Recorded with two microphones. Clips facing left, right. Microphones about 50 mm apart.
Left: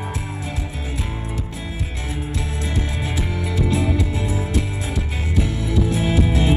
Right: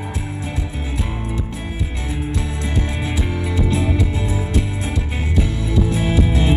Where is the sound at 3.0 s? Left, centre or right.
Right.